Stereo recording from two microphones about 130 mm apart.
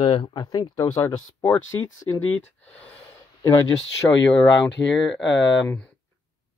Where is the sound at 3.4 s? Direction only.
30° left (ahead or behind).